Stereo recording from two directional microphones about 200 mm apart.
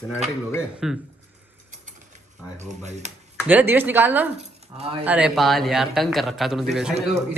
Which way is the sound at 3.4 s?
10° right (ahead or behind).